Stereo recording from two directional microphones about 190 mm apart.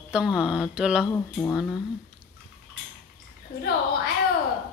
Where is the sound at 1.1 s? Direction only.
10° left (ahead or behind).